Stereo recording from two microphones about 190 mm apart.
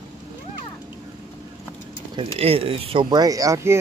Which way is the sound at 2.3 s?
30° right (ahead or behind).